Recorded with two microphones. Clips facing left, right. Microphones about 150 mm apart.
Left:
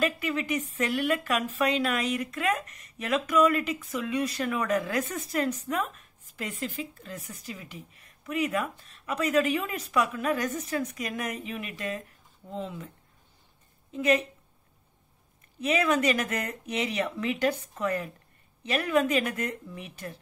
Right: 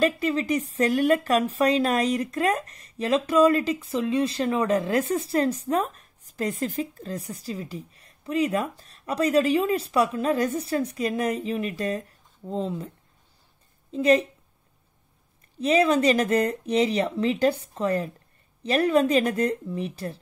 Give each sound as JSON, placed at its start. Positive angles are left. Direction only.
{"t": 0.0, "sound": "speech", "side_deg": -30}
{"t": 13.9, "sound": "speech", "side_deg": -35}
{"t": 15.6, "sound": "speech", "side_deg": -30}